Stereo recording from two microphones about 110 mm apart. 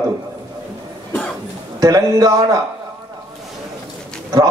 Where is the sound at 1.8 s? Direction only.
35° right (ahead or behind).